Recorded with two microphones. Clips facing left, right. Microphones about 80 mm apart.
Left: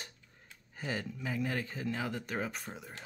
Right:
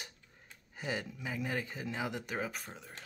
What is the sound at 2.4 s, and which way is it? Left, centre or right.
Speech, centre.